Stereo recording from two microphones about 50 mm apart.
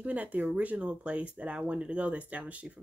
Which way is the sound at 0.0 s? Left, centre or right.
Right.